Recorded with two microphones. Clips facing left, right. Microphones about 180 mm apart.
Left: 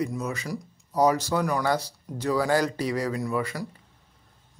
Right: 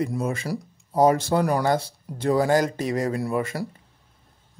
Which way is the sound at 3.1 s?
30° right (ahead or behind).